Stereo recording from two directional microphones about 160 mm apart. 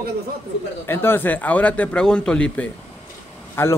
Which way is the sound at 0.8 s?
15° left (ahead or behind).